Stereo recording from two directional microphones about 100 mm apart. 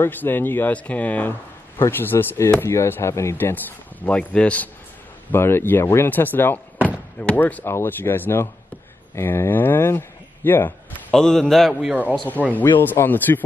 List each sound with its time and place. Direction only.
0.0 s speech: 20° left (ahead or behind)
11.1 s a man's voice: 5° left (ahead or behind)
12.5 s speech: 20° left (ahead or behind)